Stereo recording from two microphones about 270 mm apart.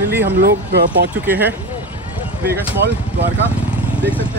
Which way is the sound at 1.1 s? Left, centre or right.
Centre.